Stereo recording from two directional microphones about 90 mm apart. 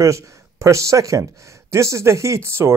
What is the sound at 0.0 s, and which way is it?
Speech, 35° right (ahead or behind).